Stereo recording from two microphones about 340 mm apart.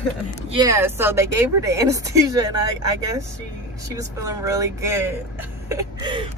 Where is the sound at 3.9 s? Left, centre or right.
Centre.